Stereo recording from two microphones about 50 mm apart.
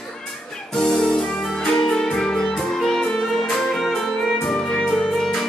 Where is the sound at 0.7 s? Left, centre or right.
Centre.